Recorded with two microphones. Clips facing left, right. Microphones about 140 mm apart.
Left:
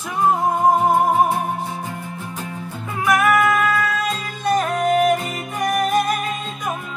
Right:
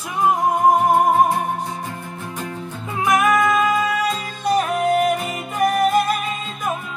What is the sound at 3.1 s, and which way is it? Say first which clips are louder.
Music: even; 20° right (ahead or behind).